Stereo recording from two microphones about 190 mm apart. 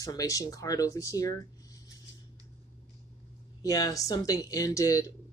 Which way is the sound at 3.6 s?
20° left (ahead or behind).